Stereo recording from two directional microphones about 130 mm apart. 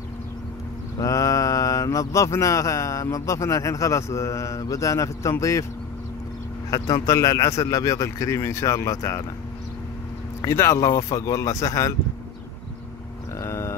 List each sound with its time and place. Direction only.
0.9 s mantra: 25° left (ahead or behind)
6.7 s mantra: 25° left (ahead or behind)
10.4 s mantra: 20° left (ahead or behind)
13.4 s a sound: 20° left (ahead or behind)